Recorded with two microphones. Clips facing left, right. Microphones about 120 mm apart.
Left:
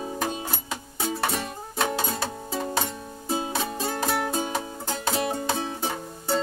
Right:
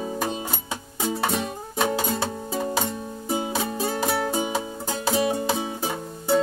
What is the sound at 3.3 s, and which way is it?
Music, 15° right (ahead or behind).